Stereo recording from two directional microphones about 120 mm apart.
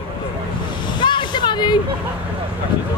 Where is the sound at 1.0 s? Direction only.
40° left (ahead or behind).